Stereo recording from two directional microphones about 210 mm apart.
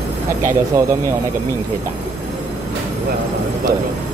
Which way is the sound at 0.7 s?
15° right (ahead or behind).